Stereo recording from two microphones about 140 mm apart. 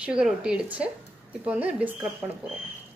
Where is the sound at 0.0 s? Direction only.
5° right (ahead or behind).